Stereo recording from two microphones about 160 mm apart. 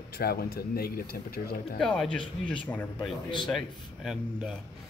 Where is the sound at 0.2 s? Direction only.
75° left (ahead or behind).